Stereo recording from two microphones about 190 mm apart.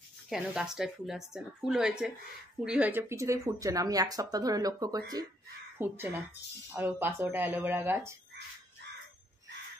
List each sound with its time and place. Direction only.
0.3 s speech: 5° right (ahead or behind)